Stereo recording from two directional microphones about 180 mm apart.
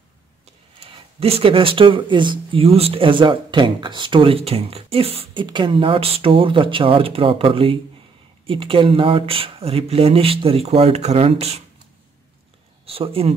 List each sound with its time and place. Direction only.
0.7 s speech: 35° right (ahead or behind)
12.8 s speech: 30° right (ahead or behind)